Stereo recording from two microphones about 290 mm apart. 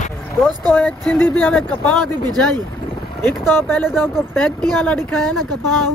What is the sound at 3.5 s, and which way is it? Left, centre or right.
A woman's voice, centre.